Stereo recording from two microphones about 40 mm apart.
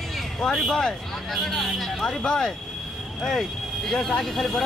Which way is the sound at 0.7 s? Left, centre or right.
Centre.